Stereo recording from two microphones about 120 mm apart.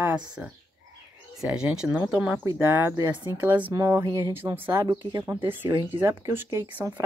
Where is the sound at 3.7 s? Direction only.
25° right (ahead or behind).